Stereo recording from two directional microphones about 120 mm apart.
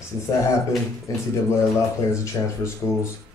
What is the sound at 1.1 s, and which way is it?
Speech, 30° left (ahead or behind).